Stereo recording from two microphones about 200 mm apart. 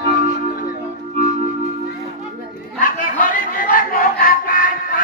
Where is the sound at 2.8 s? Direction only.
40° left (ahead or behind).